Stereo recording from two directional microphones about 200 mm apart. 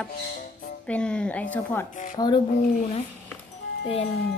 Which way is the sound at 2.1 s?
20° left (ahead or behind).